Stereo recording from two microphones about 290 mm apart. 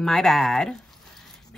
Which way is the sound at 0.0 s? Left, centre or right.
Centre.